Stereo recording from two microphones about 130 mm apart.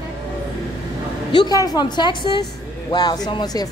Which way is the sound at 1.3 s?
35° left (ahead or behind).